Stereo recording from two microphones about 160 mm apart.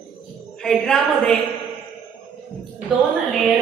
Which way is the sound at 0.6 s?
5° left (ahead or behind).